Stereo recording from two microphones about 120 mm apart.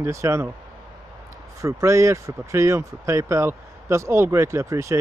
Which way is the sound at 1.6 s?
25° right (ahead or behind).